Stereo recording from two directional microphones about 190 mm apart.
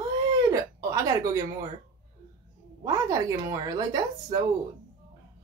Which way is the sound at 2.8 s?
15° right (ahead or behind).